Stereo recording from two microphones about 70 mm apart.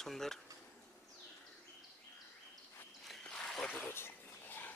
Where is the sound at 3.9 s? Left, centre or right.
Left.